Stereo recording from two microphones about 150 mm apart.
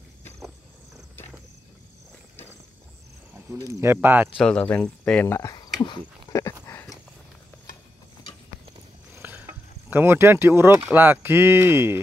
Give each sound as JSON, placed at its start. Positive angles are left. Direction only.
{"t": 3.5, "sound": "speech", "side_deg": -20}
{"t": 4.4, "sound": "speech", "side_deg": 5}
{"t": 5.8, "sound": "a sound", "side_deg": 25}
{"t": 9.1, "sound": "cricket", "side_deg": -15}
{"t": 9.8, "sound": "speech", "side_deg": -15}